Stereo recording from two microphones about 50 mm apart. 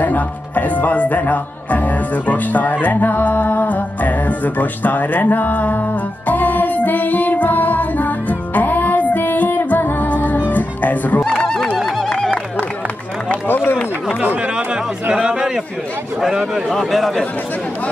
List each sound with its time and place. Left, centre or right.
0.0 s speech: left
11.3 s honk: centre
11.8 s a sound: centre
13.5 s run: left
14.2 s speech: right
15.1 s a man's voice: centre
16.6 s speech: centre